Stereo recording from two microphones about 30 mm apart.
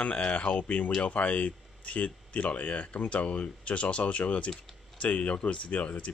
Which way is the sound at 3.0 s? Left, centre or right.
Left.